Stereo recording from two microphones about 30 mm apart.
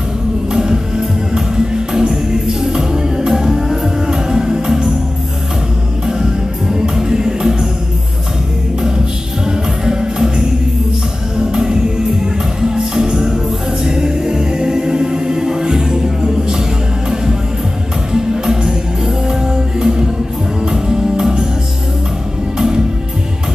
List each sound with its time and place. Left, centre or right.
0.5 s music: right
6.7 s music: centre
9.5 s music: right
13.8 s a capella: right
17.1 s music: right